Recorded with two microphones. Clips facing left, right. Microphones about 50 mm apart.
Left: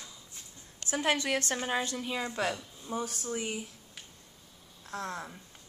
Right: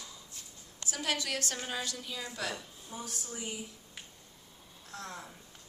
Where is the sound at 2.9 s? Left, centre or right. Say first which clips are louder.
Left 8 dB; left.